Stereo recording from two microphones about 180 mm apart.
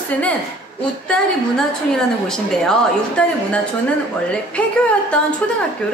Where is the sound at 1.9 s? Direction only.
5° left (ahead or behind).